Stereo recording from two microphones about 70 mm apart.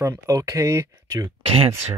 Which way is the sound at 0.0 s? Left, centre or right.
Right.